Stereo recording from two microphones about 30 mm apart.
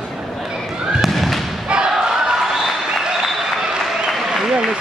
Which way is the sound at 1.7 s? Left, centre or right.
Right.